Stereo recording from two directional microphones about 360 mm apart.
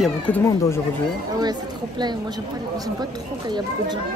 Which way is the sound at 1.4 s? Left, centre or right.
Centre.